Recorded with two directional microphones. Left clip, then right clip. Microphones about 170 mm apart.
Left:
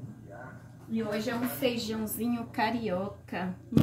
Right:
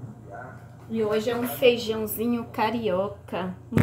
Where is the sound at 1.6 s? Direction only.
25° right (ahead or behind).